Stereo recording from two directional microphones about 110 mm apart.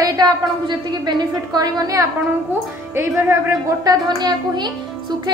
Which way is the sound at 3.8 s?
35° right (ahead or behind).